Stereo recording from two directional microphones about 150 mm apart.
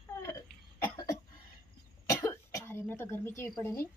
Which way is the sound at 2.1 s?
20° left (ahead or behind).